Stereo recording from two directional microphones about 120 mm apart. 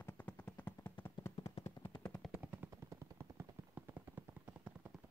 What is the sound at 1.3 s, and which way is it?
Machine gun, 55° left (ahead or behind).